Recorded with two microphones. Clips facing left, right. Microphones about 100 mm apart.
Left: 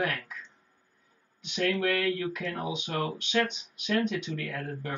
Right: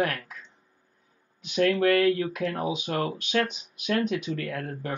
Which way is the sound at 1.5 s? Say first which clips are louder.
Right 6 dB; 50° right (ahead or behind).